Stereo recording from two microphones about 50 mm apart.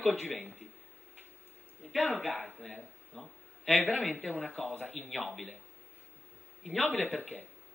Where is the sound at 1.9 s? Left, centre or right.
Centre.